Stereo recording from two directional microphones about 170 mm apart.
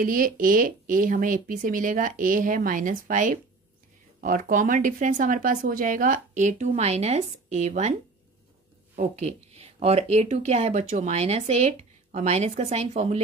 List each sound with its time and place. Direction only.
0.0 s speech: 55° right (ahead or behind)
8.9 s speech: 40° right (ahead or behind)